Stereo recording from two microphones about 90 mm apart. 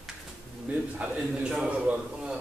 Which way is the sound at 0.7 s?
15° right (ahead or behind).